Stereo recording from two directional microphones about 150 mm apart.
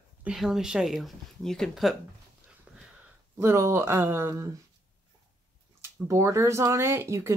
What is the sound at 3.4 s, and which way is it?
Speech, 20° right (ahead or behind).